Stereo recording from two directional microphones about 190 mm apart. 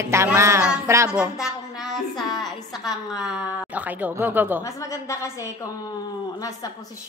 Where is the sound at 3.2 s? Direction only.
5° right (ahead or behind).